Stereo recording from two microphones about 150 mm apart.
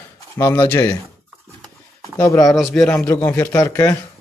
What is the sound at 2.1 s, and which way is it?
A man's voice, 20° left (ahead or behind).